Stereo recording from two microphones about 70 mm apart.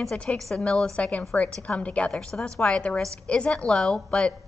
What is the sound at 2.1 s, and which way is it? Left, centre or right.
A woman's voice, centre.